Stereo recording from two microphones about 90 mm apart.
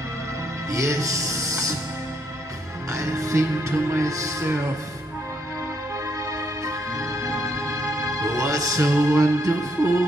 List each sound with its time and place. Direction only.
0.7 s music: 35° right (ahead or behind)
2.9 s music: 35° right (ahead or behind)
6.6 s music: 35° right (ahead or behind)